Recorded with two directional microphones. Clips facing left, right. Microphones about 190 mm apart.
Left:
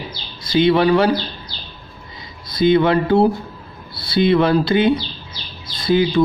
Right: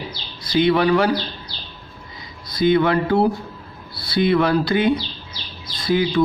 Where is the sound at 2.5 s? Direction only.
25° left (ahead or behind).